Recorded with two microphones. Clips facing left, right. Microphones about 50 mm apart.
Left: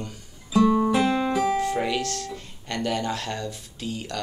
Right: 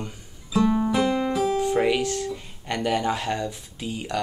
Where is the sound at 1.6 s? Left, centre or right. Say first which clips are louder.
Right 3 dB; centre.